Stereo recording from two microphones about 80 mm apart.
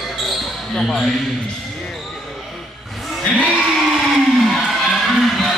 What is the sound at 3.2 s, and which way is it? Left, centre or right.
Music, centre.